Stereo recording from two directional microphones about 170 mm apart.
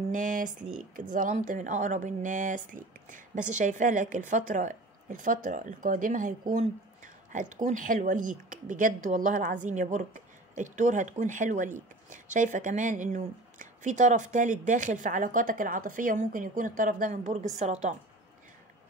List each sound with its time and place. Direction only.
0.1 s speech: 50° right (ahead or behind)